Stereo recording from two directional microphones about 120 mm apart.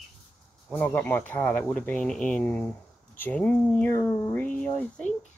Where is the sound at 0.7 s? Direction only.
15° left (ahead or behind).